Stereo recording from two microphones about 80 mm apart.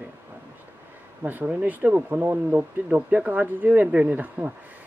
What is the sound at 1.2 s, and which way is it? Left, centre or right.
Speech, right.